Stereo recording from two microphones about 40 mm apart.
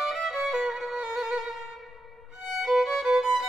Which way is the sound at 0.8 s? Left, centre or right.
Centre.